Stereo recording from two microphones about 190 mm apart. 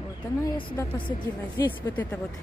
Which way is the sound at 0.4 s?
20° left (ahead or behind).